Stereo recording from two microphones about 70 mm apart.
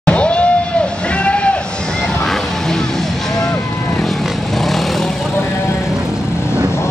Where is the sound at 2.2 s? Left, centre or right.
Centre.